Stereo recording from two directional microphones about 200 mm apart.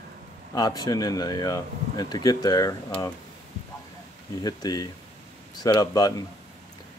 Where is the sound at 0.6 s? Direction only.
20° left (ahead or behind).